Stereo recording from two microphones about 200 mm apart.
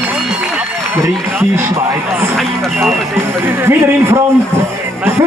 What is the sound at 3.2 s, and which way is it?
Speech, 10° right (ahead or behind).